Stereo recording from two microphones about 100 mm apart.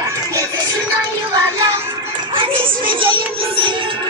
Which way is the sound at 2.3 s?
60° right (ahead or behind).